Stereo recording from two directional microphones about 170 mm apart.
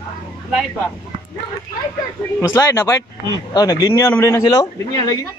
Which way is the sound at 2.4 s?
20° left (ahead or behind).